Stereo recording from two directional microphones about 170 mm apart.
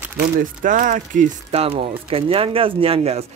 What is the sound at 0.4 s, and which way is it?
Speech, 50° right (ahead or behind).